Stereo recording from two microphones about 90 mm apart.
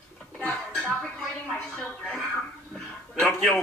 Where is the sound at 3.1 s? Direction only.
10° left (ahead or behind).